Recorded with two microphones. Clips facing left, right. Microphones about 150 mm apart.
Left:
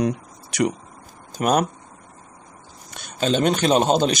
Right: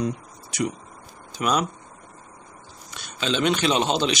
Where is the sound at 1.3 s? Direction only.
50° left (ahead or behind).